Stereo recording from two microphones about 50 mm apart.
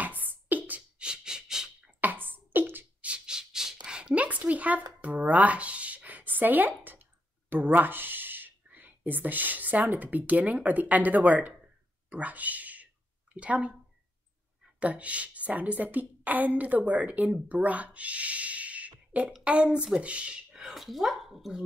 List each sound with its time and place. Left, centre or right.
0.0 s beatboxing: right
0.9 s a sound: centre
2.0 s beatboxing: right
3.3 s a sound: centre; by 12.8 s right
13.3 s speech: right
14.8 s a woman's voice: right
20.7 s speech: centre